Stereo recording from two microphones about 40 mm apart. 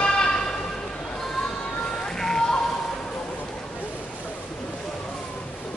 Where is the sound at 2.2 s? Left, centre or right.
Centre.